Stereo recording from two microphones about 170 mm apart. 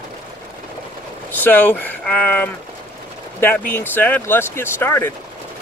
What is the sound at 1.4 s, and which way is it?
Speech, 10° left (ahead or behind).